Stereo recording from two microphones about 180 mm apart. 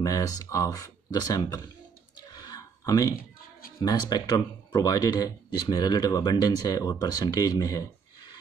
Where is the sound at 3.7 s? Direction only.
20° left (ahead or behind).